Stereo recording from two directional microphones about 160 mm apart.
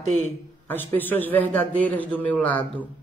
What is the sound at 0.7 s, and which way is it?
A man's voice, 10° left (ahead or behind).